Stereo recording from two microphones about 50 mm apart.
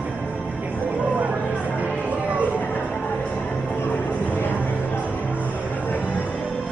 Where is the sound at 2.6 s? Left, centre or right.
Left.